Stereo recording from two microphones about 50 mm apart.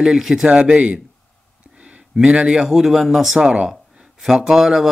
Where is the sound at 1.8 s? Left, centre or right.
Right.